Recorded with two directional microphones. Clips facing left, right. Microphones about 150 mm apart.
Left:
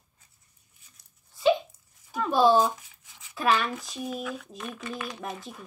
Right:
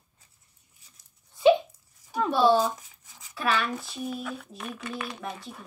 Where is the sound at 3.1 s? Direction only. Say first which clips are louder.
Right 1 dB; 40° right (ahead or behind).